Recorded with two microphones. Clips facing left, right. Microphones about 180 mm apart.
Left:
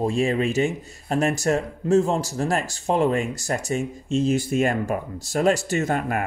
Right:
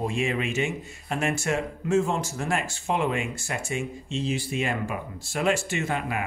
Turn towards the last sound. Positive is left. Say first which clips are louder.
# left 5 dB
turn(degrees=45)  # may be behind; listen again after turning